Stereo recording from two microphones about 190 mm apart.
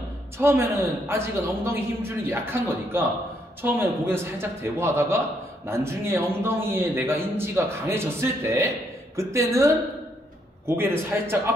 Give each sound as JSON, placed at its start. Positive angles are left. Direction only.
{"t": 0.4, "sound": "a man's voice", "side_deg": -15}
{"t": 10.8, "sound": "a man's voice", "side_deg": -10}